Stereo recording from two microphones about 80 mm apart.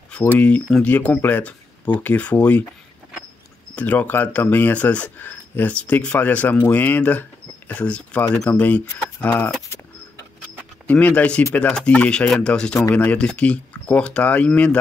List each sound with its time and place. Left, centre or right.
0.3 s speech: centre
3.7 s speech: centre
10.9 s speech: centre